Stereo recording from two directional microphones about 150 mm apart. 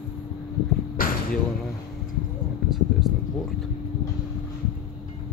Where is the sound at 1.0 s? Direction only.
70° left (ahead or behind).